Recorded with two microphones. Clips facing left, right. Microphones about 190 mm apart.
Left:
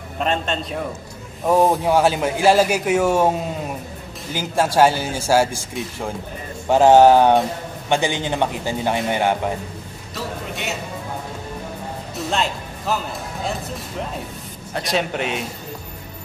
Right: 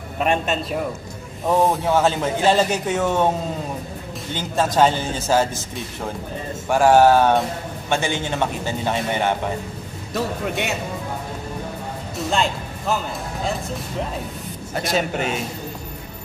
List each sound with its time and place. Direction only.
0.2 s a man's voice: 10° right (ahead or behind)
1.5 s a man's voice: 15° left (ahead or behind)
4.4 s a man's voice: 10° left (ahead or behind)
12.3 s music: centre (ahead or behind)
14.7 s a man's voice: centre (ahead or behind)